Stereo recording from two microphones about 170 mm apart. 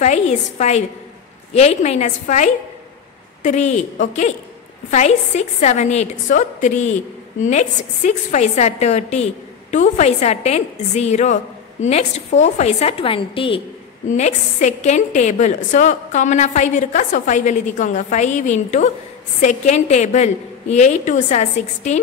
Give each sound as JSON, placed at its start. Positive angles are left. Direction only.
{"t": 0.0, "sound": "a woman's voice", "side_deg": 45}
{"t": 14.0, "sound": "a woman's voice", "side_deg": 45}